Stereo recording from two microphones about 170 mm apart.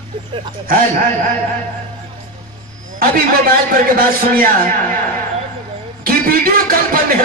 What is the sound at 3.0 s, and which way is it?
A man's voice, 55° right (ahead or behind).